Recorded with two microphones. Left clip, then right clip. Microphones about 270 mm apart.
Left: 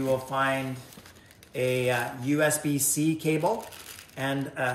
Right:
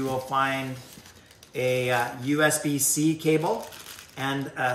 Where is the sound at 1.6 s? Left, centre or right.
Centre.